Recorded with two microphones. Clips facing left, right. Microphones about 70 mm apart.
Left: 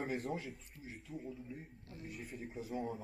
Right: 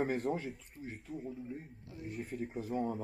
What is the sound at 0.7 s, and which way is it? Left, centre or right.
Speech, right.